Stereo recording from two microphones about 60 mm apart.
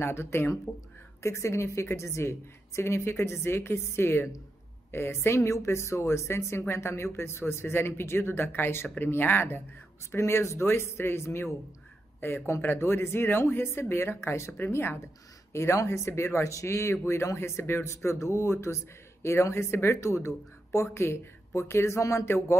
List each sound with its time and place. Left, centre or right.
0.0 s speech: left
1.2 s speech: left
10.1 s speech: left